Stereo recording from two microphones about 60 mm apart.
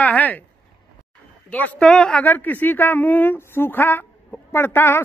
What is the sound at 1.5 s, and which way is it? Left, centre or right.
Speech, left.